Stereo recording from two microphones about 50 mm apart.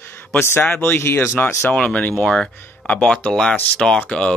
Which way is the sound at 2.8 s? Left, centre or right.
Left.